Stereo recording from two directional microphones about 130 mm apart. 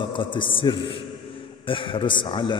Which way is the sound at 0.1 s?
40° left (ahead or behind).